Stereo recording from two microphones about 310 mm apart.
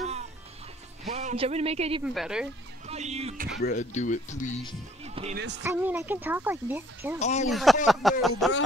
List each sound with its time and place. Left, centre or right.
1.0 s a man's voice: right
2.0 s speech: centre
2.9 s speech: right
3.6 s speech: left
5.0 s music: centre
5.6 s speech: centre
7.2 s speech: left
7.4 s speech: centre